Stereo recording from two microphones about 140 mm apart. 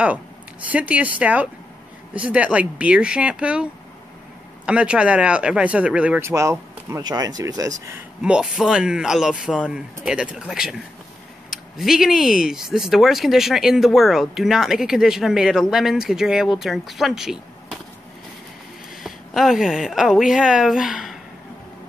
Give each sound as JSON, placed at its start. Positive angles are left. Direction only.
{"t": 0.7, "sound": "speech", "side_deg": -10}
{"t": 4.6, "sound": "speech", "side_deg": -5}
{"t": 8.2, "sound": "speech", "side_deg": -5}
{"t": 19.0, "sound": "speech", "side_deg": 0}